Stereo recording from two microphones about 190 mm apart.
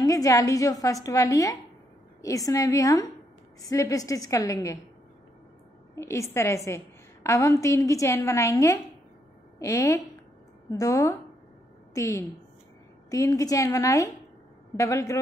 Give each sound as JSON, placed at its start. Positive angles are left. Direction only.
{"t": 0.0, "sound": "a woman's voice", "side_deg": 15}
{"t": 5.9, "sound": "a woman's voice", "side_deg": 15}